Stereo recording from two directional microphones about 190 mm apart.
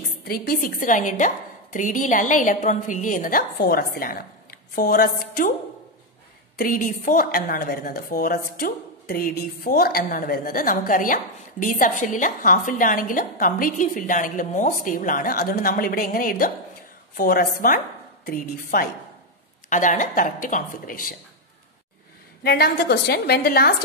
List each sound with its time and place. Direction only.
0.2 s a woman's voice: 50° left (ahead or behind)
6.6 s a woman's voice: 45° left (ahead or behind)
22.4 s a woman's voice: 60° left (ahead or behind)